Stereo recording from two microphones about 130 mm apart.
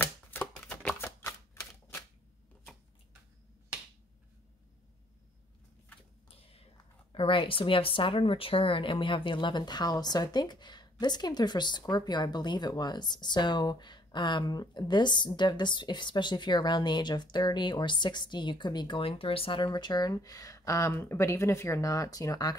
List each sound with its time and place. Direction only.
0.0 s typewriter: 15° left (ahead or behind)
7.1 s speech: 40° left (ahead or behind)